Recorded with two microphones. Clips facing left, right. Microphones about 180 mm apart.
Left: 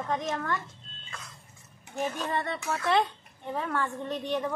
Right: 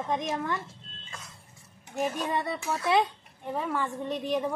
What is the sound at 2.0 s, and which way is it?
Speech, 10° right (ahead or behind).